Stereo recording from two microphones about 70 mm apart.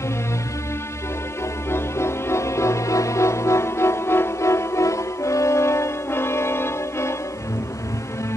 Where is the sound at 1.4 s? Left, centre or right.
Left.